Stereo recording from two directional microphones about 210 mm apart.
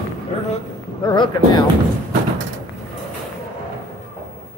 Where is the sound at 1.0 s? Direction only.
20° left (ahead or behind).